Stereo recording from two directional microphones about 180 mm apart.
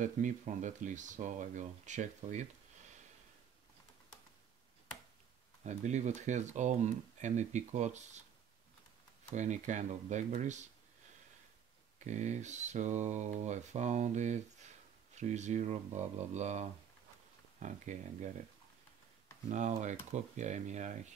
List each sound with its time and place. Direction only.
0.0 s speech: 45° right (ahead or behind)
5.7 s speech: 40° right (ahead or behind)
9.3 s speech: 40° right (ahead or behind)
12.1 s speech: 40° right (ahead or behind)
19.5 s speech: 40° right (ahead or behind)